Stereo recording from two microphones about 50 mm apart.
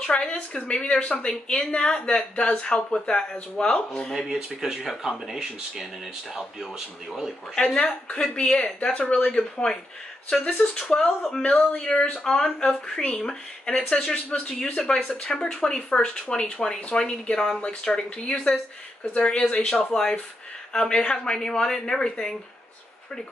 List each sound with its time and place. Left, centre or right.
0.0 s speech: centre
4.1 s speech: centre
7.5 s speech: centre